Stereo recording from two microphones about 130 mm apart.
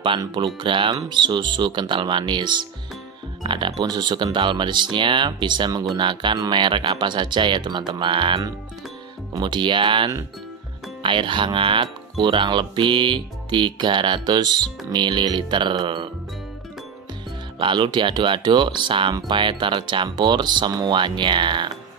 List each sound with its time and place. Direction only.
0.2 s speech: 40° right (ahead or behind)
17.6 s speech: 40° right (ahead or behind)